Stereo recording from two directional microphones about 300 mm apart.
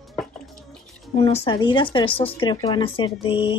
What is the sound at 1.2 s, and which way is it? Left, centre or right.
Speech, centre.